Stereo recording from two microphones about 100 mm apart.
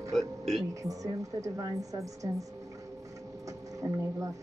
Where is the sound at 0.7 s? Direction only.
35° right (ahead or behind).